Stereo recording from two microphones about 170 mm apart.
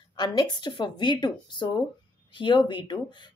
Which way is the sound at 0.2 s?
25° left (ahead or behind).